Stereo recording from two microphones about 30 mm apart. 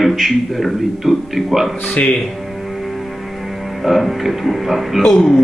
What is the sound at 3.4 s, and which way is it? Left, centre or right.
Speech, centre.